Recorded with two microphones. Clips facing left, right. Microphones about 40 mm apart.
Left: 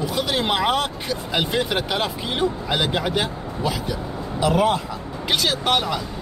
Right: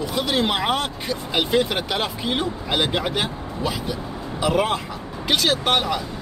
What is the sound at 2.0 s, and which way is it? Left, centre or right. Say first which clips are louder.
Speech: left 1 dB; centre.